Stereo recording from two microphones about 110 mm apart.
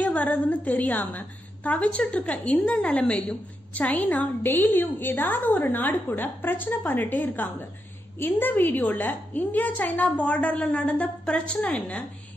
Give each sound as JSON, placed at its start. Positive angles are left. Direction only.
{"t": 0.0, "sound": "a woman's voice", "side_deg": 15}